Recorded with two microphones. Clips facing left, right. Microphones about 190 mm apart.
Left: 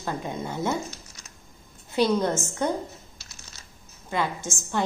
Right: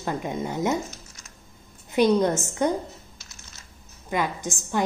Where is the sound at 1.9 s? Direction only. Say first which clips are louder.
Right 3 dB; 15° right (ahead or behind).